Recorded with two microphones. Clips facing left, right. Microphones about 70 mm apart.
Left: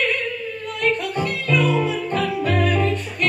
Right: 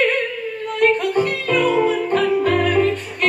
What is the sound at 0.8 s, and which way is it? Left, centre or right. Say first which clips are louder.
Music: right 6 dB; right.